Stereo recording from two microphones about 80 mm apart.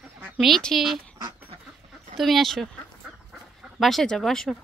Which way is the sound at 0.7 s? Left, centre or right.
Centre.